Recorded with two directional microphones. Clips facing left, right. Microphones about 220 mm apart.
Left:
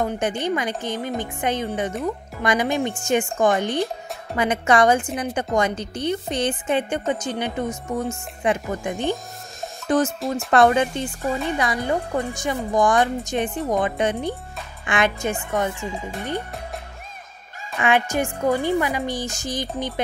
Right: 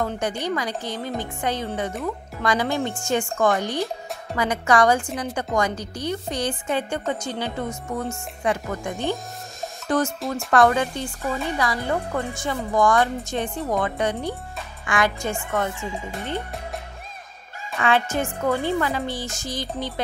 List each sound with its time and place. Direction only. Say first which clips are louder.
0.0 s a woman's voice: left 2 dB; 20° left (ahead or behind)
17.7 s speech: left 1 dB; 15° left (ahead or behind)